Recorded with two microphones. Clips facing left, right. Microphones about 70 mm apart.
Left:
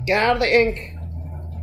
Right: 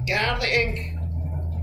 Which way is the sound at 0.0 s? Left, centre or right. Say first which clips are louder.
Left 7 dB; left.